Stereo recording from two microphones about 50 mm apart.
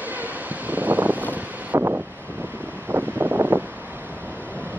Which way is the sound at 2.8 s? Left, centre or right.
Right.